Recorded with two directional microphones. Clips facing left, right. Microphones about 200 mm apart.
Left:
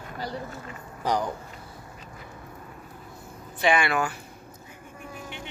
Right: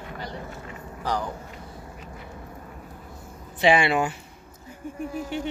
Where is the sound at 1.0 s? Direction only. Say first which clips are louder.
Left 2 dB; 15° left (ahead or behind).